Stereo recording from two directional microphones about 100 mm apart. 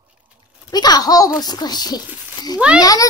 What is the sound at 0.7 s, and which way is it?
A child's voice, 40° left (ahead or behind).